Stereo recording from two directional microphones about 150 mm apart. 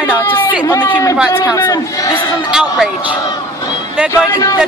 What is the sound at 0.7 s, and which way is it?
A man's voice, 25° left (ahead or behind).